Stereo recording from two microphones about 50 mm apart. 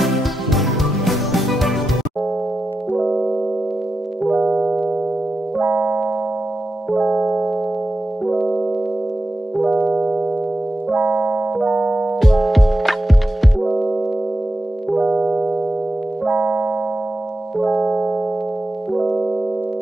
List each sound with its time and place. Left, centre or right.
0.0 s music: centre
3.0 s music: centre
4.3 s music: right
6.9 s music: centre
9.9 s music: centre
10.9 s keyboard: right
11.6 s music: right
12.2 s music: centre
15.0 s music: right
17.6 s music: centre
18.9 s music: centre